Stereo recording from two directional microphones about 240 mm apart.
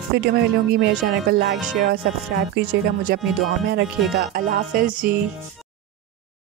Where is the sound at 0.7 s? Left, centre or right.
Right.